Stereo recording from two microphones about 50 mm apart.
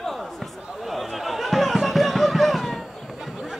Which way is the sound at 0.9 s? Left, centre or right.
Centre.